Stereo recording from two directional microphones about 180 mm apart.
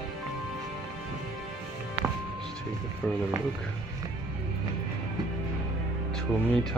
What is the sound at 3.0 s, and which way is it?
Speech, 5° left (ahead or behind).